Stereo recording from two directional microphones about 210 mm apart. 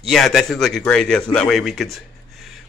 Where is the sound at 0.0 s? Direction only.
Centre (ahead or behind).